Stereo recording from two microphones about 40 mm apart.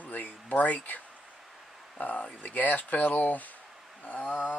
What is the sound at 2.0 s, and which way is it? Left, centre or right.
Speech, left.